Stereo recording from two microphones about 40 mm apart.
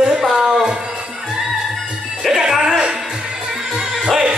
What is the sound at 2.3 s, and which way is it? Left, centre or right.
Music, centre.